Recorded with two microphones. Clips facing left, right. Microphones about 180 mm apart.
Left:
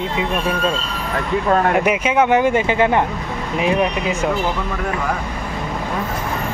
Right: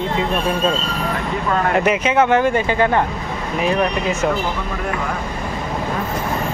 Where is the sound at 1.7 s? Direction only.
10° left (ahead or behind).